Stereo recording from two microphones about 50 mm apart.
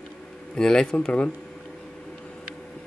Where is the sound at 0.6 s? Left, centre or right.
Centre.